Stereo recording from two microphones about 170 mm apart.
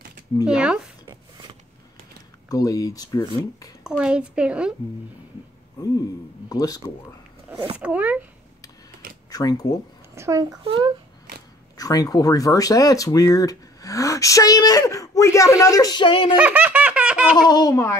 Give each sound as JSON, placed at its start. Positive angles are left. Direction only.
{"t": 0.5, "sound": "speech", "side_deg": -5}
{"t": 1.0, "sound": "a sound", "side_deg": -30}
{"t": 2.5, "sound": "speech", "side_deg": 20}
{"t": 3.8, "sound": "speech", "side_deg": -5}
{"t": 6.5, "sound": "speech", "side_deg": 20}
{"t": 7.7, "sound": "speech", "side_deg": -10}
{"t": 9.3, "sound": "speech", "side_deg": 20}
{"t": 10.1, "sound": "speech", "side_deg": -15}
{"t": 10.6, "sound": "a child's voice", "side_deg": -30}
{"t": 11.7, "sound": "speech", "side_deg": 20}
{"t": 16.3, "sound": "laughter", "side_deg": -10}
{"t": 17.4, "sound": "speech", "side_deg": 25}